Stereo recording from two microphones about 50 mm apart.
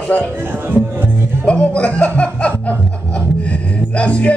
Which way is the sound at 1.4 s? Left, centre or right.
Left.